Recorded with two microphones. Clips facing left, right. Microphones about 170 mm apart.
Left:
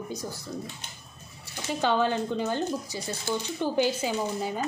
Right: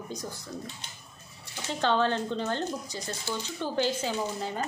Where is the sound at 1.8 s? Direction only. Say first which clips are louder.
Left 1 dB; 10° left (ahead or behind).